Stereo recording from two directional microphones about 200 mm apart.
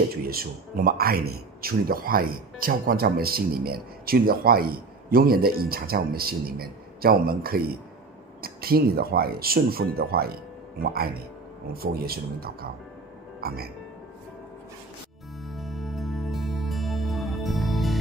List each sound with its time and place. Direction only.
0.1 s speech: 50° right (ahead or behind)
15.4 s music: centre (ahead or behind)